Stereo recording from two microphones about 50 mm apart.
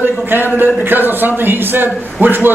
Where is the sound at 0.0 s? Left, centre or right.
Right.